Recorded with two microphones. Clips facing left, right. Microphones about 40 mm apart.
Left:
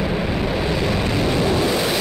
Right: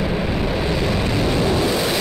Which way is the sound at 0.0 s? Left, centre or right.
Centre.